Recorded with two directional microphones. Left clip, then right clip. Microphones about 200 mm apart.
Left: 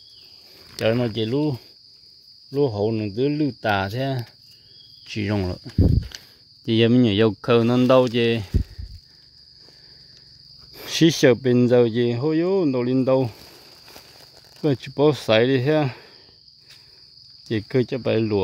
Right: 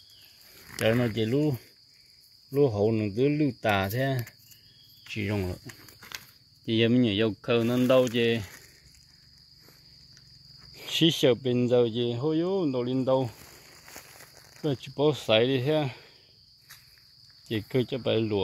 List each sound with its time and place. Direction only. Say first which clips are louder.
0.7 s speech: left 4 dB; 15° left (ahead or behind)
5.0 s speech: left 6 dB; 35° left (ahead or behind)
5.9 s a sound: left 5 dB; 25° right (ahead or behind)
6.6 s speech: left 6 dB; 30° left (ahead or behind)
10.7 s speech: left 6 dB; 40° left (ahead or behind)
15.0 s speech: left 5 dB; 40° left (ahead or behind)
17.6 s speech: left 6 dB; 35° left (ahead or behind)